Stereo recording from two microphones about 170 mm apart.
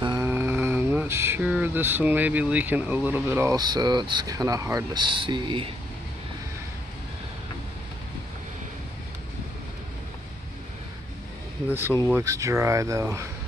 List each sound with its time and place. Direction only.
0.0 s speech: 20° right (ahead or behind)
12.1 s speech: 15° right (ahead or behind)